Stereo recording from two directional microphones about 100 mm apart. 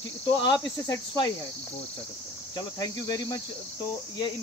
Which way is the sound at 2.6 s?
40° left (ahead or behind).